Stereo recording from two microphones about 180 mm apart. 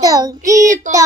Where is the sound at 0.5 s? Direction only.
45° right (ahead or behind).